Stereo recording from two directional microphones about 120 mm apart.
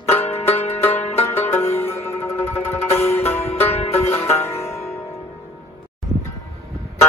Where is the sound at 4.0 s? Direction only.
20° left (ahead or behind).